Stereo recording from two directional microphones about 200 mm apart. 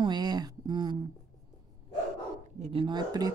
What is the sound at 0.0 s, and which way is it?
Speech, 20° right (ahead or behind).